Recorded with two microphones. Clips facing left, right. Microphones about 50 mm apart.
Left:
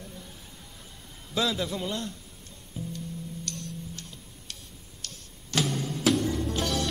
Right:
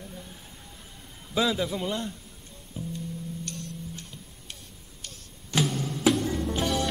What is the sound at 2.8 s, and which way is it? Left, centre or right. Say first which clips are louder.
Music: right 1 dB; centre.